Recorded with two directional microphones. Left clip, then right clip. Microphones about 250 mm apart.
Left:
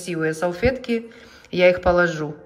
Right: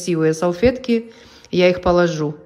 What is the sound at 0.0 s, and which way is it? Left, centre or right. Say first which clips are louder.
Speech: right 5 dB; centre.